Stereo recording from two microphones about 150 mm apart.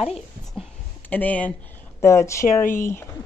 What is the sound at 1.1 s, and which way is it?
Speech, 10° left (ahead or behind).